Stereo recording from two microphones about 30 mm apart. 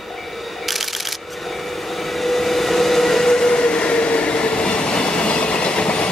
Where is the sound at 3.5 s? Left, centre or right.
Left.